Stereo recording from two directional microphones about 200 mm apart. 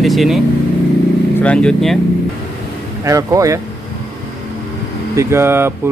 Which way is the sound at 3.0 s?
15° right (ahead or behind).